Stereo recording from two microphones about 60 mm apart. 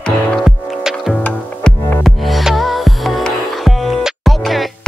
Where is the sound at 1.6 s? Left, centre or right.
Centre.